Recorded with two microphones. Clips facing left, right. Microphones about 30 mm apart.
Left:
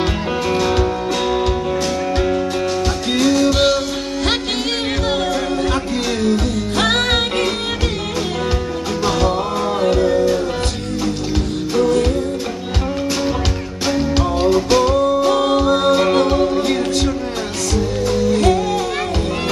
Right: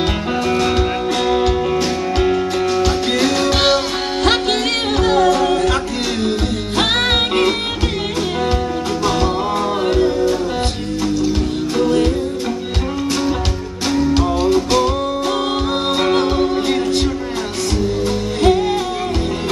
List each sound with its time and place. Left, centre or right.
0.7 s music: centre
1.5 s music: right
2.8 s music: right
5.3 s music: right
6.2 s music: right
9.8 s music: right
14.5 s music: centre
15.3 s music: right
16.3 s music: right
18.0 s music: right